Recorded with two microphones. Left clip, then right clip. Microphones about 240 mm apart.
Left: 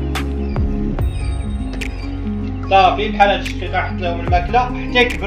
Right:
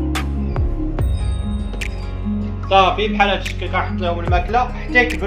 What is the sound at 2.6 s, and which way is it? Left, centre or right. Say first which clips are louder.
Music: left 2 dB; centre.